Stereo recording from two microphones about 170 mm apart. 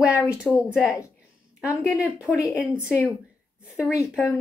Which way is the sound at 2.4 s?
15° left (ahead or behind).